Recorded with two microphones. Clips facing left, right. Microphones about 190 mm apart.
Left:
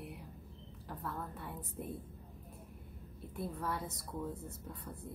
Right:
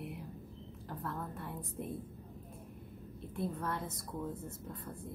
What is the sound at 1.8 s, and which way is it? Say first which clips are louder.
Speech: right 2 dB; centre (ahead or behind).